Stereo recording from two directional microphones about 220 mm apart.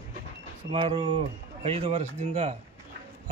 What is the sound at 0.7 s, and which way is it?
Speech, 25° right (ahead or behind).